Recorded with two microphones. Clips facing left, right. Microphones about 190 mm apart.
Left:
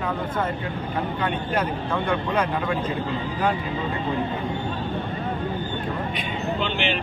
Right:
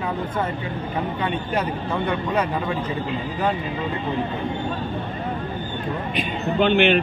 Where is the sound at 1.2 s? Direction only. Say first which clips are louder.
Even; 5° right (ahead or behind).